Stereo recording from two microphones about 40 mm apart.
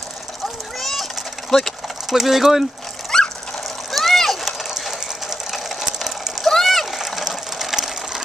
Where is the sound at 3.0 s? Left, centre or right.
Centre.